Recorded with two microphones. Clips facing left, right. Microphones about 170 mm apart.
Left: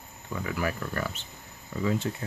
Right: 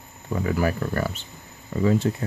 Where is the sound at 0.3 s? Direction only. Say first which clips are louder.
Right 7 dB; 40° right (ahead or behind).